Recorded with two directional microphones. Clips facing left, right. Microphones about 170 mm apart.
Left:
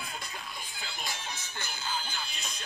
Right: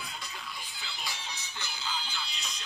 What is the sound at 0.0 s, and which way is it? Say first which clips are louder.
Music: left 2 dB; 50° left (ahead or behind).